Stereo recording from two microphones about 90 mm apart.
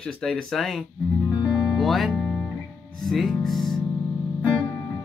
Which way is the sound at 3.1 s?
5° left (ahead or behind).